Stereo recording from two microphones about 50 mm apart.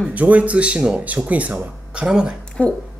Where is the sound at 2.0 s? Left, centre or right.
Centre.